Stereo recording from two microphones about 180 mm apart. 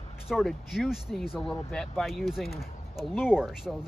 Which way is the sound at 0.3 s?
Centre (ahead or behind).